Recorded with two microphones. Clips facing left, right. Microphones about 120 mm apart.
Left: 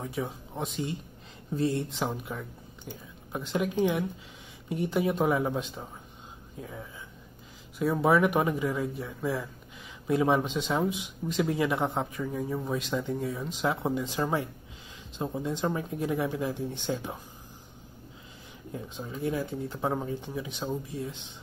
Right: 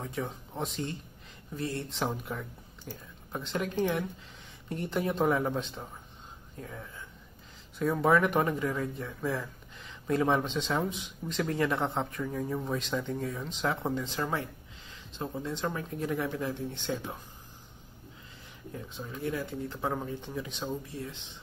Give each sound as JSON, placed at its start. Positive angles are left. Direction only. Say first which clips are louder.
{"t": 0.0, "sound": "speech", "louder": "left 2 dB", "side_deg": 5}
{"t": 1.5, "sound": "speech", "louder": "left 7 dB", "side_deg": 20}
{"t": 1.9, "sound": "speech", "louder": "left 1 dB", "side_deg": 0}
{"t": 18.7, "sound": "speech", "louder": "left 3 dB", "side_deg": 20}